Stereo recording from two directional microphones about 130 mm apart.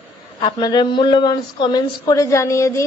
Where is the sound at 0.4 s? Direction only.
35° left (ahead or behind).